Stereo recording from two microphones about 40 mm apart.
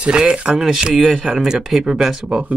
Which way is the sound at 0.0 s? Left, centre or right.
Right.